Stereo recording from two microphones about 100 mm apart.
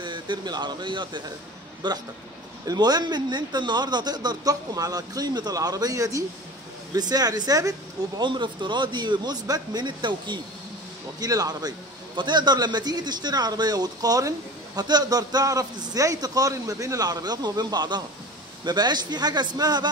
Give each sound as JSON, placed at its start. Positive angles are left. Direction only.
{"t": 0.0, "sound": "a man's voice", "side_deg": -50}
{"t": 8.2, "sound": "a man's voice", "side_deg": -50}